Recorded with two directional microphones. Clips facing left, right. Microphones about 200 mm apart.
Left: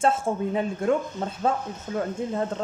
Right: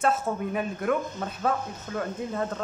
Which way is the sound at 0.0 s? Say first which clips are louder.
Left 3 dB; 30° left (ahead or behind).